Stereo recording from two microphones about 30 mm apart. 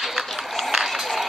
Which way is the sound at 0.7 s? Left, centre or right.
Centre.